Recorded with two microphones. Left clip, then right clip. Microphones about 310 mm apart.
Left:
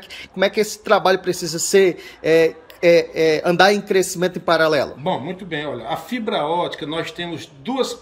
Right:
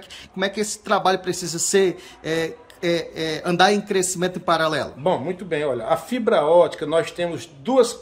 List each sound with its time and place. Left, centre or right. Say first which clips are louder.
0.4 s a man's voice: left 6 dB; centre
5.0 s speech: right 1 dB; centre